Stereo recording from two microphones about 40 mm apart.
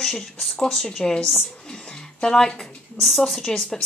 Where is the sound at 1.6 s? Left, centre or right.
Centre.